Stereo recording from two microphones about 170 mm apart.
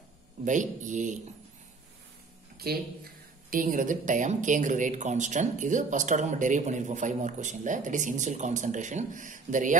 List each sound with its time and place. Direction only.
0.5 s speech: 45° right (ahead or behind)
2.5 s speech: 65° right (ahead or behind); by 9.8 s 50° right (ahead or behind)